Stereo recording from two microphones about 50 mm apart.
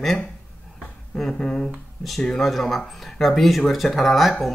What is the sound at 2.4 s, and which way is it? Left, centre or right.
Speech, centre.